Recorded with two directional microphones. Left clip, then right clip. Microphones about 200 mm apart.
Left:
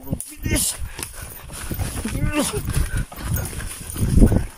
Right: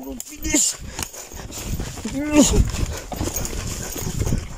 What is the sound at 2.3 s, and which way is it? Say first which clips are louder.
Wild animals: right 7 dB; 20° right (ahead or behind).